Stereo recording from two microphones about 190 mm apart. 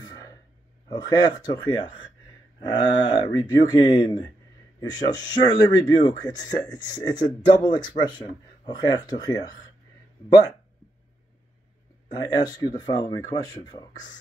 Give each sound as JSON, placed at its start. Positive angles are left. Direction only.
{"t": 0.8, "sound": "speech", "side_deg": 20}
{"t": 12.1, "sound": "speech", "side_deg": 20}